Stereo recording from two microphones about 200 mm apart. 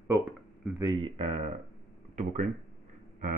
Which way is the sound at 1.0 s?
30° right (ahead or behind).